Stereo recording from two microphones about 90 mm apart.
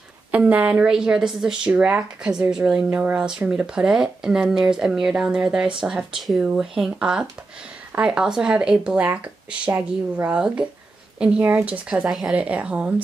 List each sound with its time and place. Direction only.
0.3 s speech: 15° right (ahead or behind)
12.1 s speech: 5° right (ahead or behind)
12.4 s speech: 15° right (ahead or behind)